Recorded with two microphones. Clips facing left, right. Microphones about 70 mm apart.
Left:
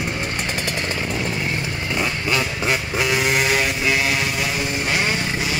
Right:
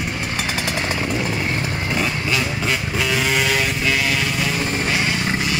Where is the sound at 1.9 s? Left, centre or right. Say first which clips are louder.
Left 1 dB; centre.